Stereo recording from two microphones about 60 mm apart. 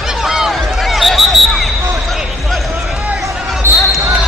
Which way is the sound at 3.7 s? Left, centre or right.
Right.